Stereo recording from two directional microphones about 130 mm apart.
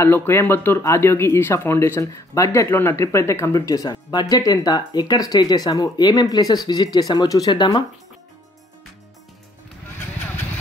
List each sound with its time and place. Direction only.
0.0 s speech: 15° left (ahead or behind); by 7.8 s 35° left (ahead or behind)